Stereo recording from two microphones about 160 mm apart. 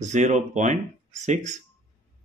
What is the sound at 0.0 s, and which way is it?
Speech, 50° right (ahead or behind).